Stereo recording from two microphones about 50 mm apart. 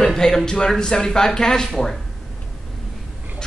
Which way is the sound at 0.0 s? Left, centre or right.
Centre.